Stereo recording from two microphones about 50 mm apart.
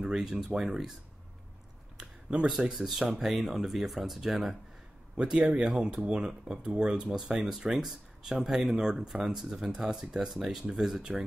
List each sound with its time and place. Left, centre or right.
0.0 s speech: centre
2.6 s speech: centre
5.1 s speech: centre